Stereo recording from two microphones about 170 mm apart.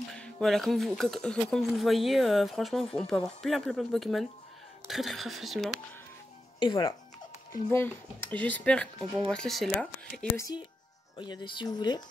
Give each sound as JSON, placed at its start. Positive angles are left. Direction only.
{"t": 0.1, "sound": "speech", "side_deg": 5}
{"t": 6.6, "sound": "speech", "side_deg": 25}
{"t": 7.7, "sound": "speech", "side_deg": 10}
{"t": 10.3, "sound": "speech", "side_deg": 20}